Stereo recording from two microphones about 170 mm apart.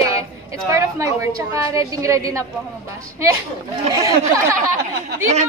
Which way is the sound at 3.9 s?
20° right (ahead or behind).